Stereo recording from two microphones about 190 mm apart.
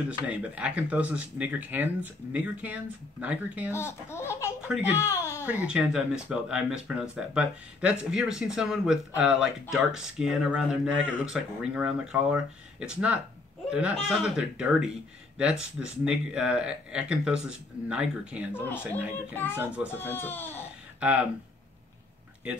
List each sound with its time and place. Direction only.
0.3 s speech: 5° right (ahead or behind)
3.7 s speech: 15° left (ahead or behind)
4.6 s speech: 5° right (ahead or behind)
5.0 s a sound: 15° left (ahead or behind)
5.5 s speech: 5° right (ahead or behind)
18.5 s speech: 10° left (ahead or behind)
19.6 s speech: 5° right (ahead or behind)
19.9 s speech: 10° left (ahead or behind)
21.0 s speech: 5° right (ahead or behind)